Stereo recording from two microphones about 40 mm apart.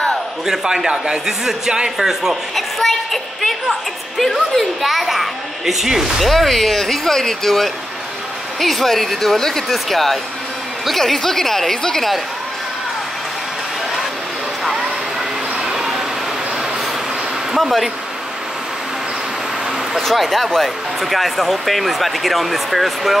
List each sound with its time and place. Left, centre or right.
0.5 s a man's voice: centre
2.5 s a sound: centre
4.2 s a man's voice: centre
6.2 s speech: centre
14.6 s vehicle: centre
15.6 s a sound: centre
17.6 s speech: centre
20.0 s speech: centre